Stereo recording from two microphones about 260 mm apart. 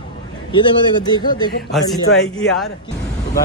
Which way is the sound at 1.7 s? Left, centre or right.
Centre.